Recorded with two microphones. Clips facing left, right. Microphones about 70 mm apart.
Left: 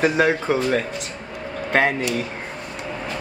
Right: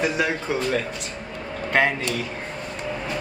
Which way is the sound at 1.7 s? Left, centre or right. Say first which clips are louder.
Left 1 dB; left.